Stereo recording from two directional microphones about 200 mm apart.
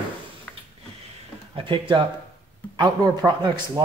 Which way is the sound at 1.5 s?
25° right (ahead or behind).